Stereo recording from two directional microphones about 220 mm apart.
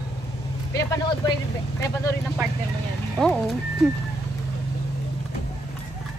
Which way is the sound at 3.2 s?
5° left (ahead or behind).